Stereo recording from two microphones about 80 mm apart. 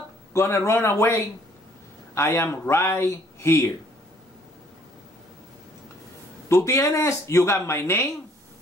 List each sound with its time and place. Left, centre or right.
0.3 s speech: left
2.1 s speech: left
6.5 s speech: left